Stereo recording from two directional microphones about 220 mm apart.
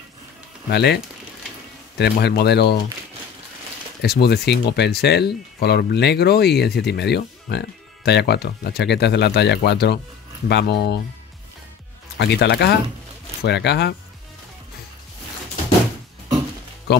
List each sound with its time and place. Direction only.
0.7 s speech: 50° left (ahead or behind)
4.0 s speech: 45° left (ahead or behind)
12.2 s speech: 50° left (ahead or behind)